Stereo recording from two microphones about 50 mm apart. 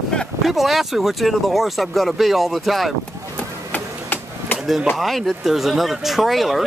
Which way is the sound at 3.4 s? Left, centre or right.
Left.